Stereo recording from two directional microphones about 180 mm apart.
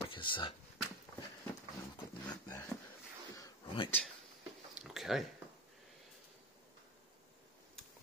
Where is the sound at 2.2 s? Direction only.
20° left (ahead or behind).